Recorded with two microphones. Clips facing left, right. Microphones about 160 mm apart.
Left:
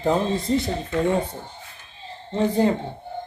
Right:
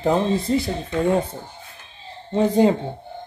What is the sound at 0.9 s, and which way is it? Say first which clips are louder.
Speech: right 2 dB; 10° right (ahead or behind).